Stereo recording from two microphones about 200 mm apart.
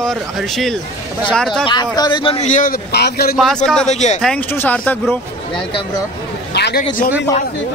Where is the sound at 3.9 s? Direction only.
35° left (ahead or behind).